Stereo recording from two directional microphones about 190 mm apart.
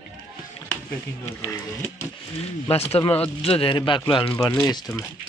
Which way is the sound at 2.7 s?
30° left (ahead or behind).